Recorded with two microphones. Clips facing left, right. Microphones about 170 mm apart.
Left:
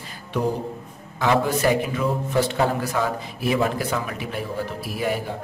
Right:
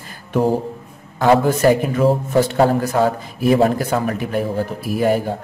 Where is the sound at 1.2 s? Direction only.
45° right (ahead or behind).